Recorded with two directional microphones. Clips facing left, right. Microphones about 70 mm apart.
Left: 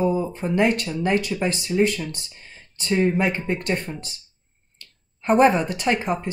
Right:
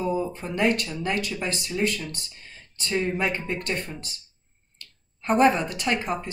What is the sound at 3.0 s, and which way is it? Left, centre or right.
Speech, left.